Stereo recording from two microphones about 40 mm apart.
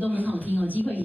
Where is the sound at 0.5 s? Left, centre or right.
Right.